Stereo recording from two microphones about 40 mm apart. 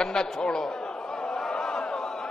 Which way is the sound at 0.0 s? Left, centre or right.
Centre.